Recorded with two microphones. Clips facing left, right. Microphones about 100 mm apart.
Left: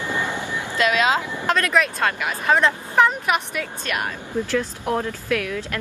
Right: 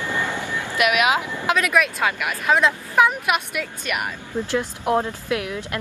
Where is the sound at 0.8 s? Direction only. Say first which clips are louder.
Even; 15° right (ahead or behind).